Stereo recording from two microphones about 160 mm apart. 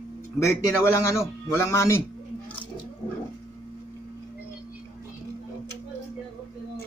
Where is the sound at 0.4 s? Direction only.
15° left (ahead or behind).